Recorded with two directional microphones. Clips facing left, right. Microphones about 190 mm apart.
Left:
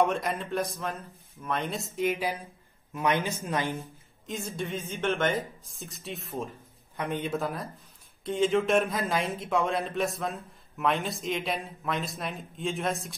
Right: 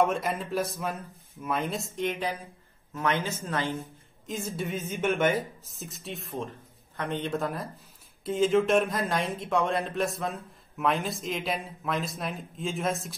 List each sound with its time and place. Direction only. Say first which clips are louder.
0.0 s a man's voice: even; centre (ahead or behind); by 3.8 s 15° left (ahead or behind)
4.3 s speech: right 1 dB; centre (ahead or behind)